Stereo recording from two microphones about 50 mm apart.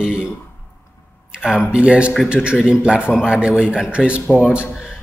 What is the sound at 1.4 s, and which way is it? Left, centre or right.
A man's voice, centre.